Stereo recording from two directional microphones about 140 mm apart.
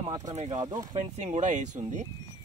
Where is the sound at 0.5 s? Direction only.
30° right (ahead or behind).